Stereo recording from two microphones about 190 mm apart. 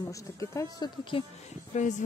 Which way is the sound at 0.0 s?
15° left (ahead or behind).